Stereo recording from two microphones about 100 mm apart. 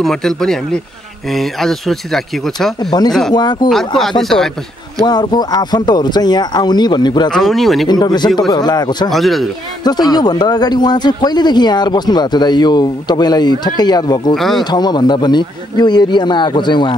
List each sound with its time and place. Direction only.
0.0 s speech: 5° left (ahead or behind)
5.0 s speech: 45° left (ahead or behind)
7.2 s speech: 5° left (ahead or behind)
7.9 s speech: 45° left (ahead or behind)
9.1 s speech: centre (ahead or behind)
9.8 s speech: 45° left (ahead or behind)
14.3 s speech: centre (ahead or behind)
14.6 s speech: 45° left (ahead or behind)